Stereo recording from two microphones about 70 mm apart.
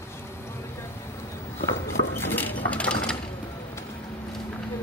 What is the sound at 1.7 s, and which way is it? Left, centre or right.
Dishes, left.